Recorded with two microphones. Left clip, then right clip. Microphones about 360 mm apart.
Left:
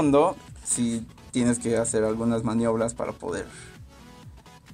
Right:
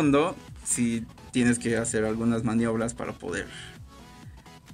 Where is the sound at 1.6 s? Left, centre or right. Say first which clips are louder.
Left 3 dB; left.